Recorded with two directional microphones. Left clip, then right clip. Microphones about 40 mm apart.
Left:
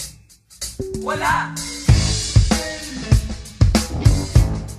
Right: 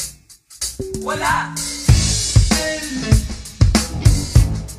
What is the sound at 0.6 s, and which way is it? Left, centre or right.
Music, right.